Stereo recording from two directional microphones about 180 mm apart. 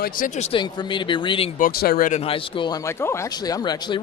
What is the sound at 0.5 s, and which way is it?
Speech, 25° left (ahead or behind).